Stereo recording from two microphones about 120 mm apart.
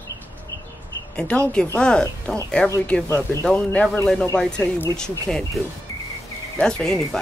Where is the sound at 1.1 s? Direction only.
10° left (ahead or behind).